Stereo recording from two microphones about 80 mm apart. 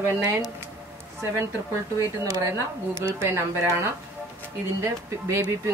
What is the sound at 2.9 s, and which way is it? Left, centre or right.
Speech, right.